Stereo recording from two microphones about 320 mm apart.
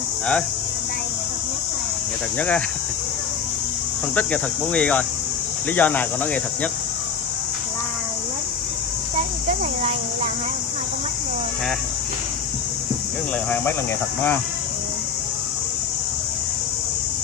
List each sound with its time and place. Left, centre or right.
2.3 s speech: centre
4.1 s speech: centre